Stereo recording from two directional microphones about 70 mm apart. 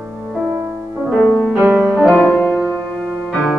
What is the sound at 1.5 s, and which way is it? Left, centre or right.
Music, centre.